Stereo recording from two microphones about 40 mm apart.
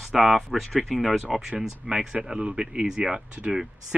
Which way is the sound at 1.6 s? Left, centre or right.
Centre.